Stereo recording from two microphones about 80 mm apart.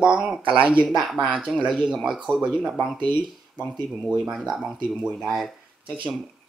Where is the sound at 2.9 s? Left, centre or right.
Right.